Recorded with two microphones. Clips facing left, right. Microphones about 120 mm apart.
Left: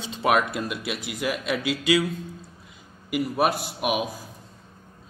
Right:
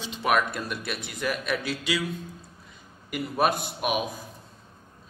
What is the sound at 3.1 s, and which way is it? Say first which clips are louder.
Speech: left 2 dB; 5° left (ahead or behind).